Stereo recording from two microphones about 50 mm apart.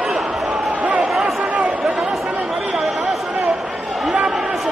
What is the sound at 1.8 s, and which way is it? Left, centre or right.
Chatter, centre.